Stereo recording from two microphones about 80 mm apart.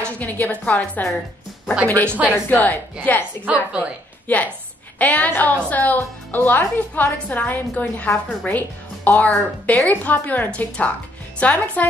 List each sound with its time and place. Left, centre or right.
0.0 s a woman's voice: centre
3.4 s a woman's voice: centre
4.3 s a woman's voice: centre